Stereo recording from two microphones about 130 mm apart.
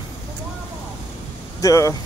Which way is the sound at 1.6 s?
25° left (ahead or behind).